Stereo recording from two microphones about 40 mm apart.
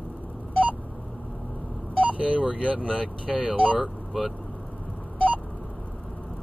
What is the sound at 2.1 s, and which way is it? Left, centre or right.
Telephone dialing, right.